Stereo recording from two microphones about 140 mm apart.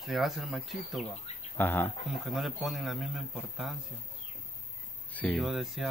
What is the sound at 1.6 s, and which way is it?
Speech, 15° left (ahead or behind).